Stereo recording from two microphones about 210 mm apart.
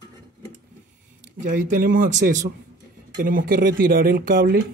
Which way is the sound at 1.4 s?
40° right (ahead or behind).